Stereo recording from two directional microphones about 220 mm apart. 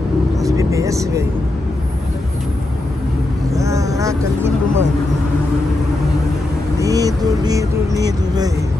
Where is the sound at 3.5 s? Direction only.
15° right (ahead or behind).